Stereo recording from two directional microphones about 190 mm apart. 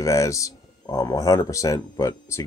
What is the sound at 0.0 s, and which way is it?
Speech, 15° left (ahead or behind).